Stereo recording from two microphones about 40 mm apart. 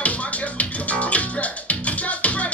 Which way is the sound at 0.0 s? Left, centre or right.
Left.